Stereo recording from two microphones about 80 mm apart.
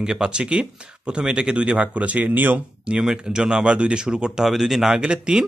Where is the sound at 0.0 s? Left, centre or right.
Centre.